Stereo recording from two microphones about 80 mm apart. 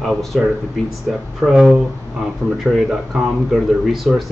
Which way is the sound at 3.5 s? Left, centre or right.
Centre.